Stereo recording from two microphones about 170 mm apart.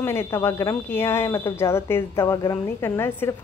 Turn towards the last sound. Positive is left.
turn(degrees=15)  # may be behind; listen again after turning